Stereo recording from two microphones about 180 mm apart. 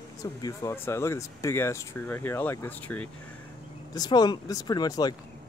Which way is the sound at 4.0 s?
25° left (ahead or behind).